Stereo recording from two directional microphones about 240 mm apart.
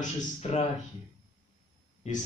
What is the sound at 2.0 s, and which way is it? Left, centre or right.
Speech, left.